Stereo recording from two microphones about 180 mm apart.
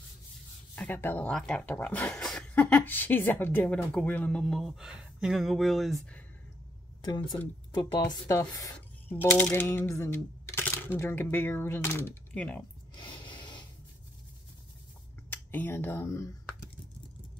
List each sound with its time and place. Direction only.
0.7 s speech: 10° left (ahead or behind)
7.2 s speech: 20° left (ahead or behind)
12.9 s a sound: 25° left (ahead or behind)
15.2 s speech: 10° left (ahead or behind)